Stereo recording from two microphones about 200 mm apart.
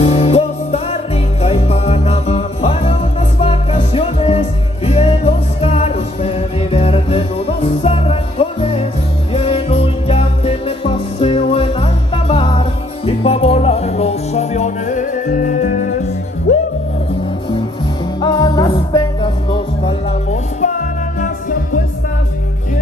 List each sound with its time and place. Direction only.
0.0 s music: 30° left (ahead or behind)
18.2 s music: 20° left (ahead or behind); by 21.8 s 40° left (ahead or behind)